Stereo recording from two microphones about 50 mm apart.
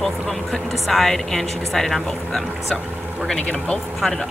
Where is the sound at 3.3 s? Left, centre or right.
Centre.